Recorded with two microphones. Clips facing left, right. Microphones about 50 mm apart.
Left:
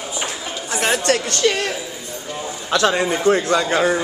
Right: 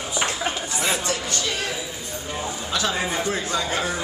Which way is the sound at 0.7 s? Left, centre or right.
Left.